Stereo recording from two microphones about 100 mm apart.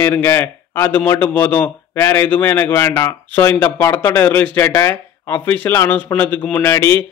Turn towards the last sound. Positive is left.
turn(degrees=25)  # may be behind; listen again after turning